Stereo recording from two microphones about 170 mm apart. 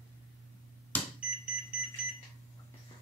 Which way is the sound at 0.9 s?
10° left (ahead or behind).